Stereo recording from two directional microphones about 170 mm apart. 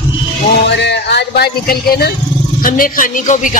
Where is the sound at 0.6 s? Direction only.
90° left; by 2.1 s 65° left (ahead or behind).